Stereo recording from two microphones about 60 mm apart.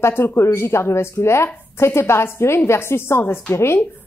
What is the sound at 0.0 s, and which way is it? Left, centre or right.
A woman's voice, left.